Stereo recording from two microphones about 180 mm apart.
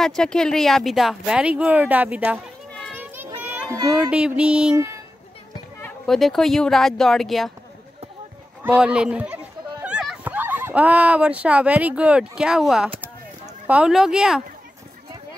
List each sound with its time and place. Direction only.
0.0 s speech: 5° left (ahead or behind)
3.0 s children playing: 10° right (ahead or behind)
3.9 s speech: 5° right (ahead or behind)
4.7 s a child's voice: 15° right (ahead or behind)
5.8 s speech: 5° left (ahead or behind)
8.6 s speech: 5° right (ahead or behind)